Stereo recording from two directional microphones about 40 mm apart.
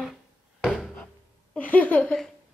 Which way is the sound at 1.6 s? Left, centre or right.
Left.